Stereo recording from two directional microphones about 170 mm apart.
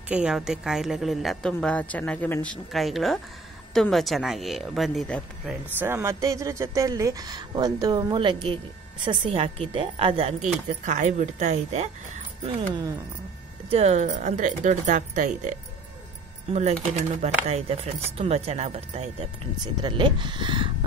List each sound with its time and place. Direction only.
0.1 s a woman's voice: 5° right (ahead or behind)
5.8 s a woman's voice: 15° right (ahead or behind); by 11.9 s 40° right (ahead or behind)
13.7 s speech: 40° right (ahead or behind)
17.2 s speech: 40° right (ahead or behind)